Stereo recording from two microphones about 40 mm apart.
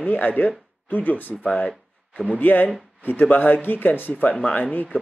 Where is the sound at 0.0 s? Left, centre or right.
Left.